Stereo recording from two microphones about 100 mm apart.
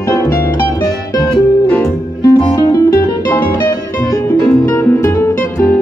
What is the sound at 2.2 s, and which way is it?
Music, 35° left (ahead or behind).